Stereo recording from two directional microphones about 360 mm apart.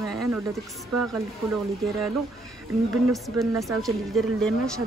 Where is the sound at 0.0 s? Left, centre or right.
Centre.